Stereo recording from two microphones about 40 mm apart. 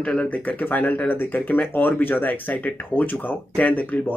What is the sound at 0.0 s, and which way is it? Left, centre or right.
Speech, left.